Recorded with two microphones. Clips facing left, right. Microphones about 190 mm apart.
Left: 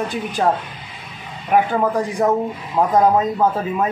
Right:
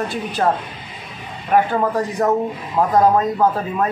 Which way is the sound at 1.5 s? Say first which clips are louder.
Even; 5° left (ahead or behind).